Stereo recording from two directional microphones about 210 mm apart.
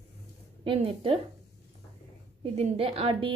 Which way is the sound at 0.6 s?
25° right (ahead or behind).